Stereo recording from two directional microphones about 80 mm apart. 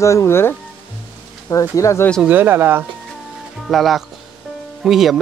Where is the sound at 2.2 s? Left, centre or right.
Right.